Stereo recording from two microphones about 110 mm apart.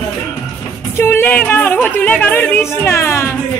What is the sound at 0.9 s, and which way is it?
Speech, 20° left (ahead or behind).